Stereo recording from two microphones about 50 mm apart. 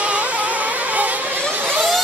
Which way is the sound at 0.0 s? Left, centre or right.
Right.